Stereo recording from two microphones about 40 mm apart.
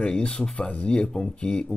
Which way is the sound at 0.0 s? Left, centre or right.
Left.